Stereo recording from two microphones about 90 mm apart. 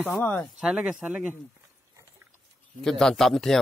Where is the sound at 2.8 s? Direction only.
5° left (ahead or behind).